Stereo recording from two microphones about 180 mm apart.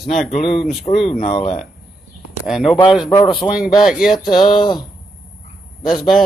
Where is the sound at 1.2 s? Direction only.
35° left (ahead or behind).